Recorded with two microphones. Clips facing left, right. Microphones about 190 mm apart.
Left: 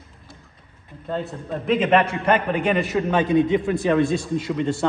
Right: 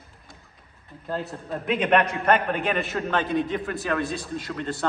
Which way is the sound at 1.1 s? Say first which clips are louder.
Left 3 dB; centre (ahead or behind).